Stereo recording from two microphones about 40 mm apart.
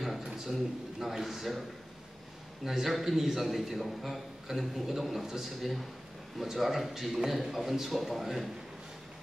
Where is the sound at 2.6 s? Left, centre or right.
Centre.